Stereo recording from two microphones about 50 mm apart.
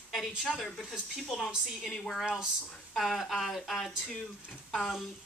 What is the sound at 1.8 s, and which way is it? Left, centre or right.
Speech, centre.